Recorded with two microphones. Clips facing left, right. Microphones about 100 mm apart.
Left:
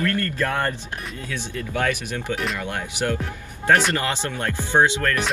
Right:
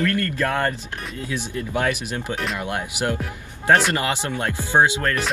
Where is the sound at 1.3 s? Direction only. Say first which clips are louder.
Right 3 dB; 15° right (ahead or behind).